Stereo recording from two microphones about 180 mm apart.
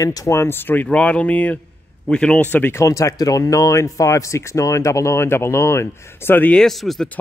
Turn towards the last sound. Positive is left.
turn(degrees=0)  # may be behind; listen again after turning